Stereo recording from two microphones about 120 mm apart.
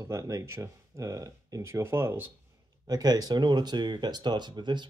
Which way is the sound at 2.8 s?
35° right (ahead or behind).